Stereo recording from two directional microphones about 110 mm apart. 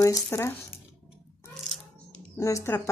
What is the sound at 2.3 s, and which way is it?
Speech, 25° left (ahead or behind).